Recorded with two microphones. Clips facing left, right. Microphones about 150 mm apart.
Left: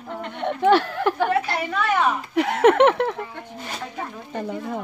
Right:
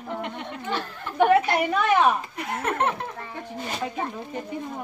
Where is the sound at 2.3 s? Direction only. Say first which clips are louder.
Left 11 dB; 90° left.